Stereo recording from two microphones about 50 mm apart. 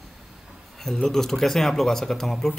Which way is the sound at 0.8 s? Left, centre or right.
Centre.